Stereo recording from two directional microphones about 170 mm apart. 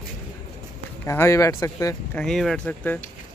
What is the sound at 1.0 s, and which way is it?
Speech, 15° left (ahead or behind).